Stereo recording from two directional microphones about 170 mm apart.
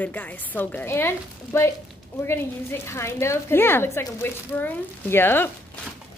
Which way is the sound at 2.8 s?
15° left (ahead or behind).